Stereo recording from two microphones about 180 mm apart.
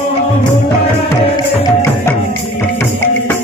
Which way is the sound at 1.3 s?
15° left (ahead or behind).